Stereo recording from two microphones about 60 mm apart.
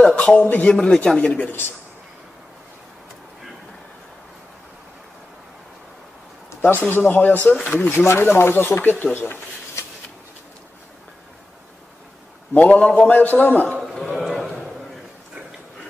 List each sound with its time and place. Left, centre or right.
0.0 s a man's voice: centre
1.2 s a man's voice: left
6.6 s a man's voice: left
7.6 s speech: left
12.5 s a man's voice: left
14.1 s a sound: centre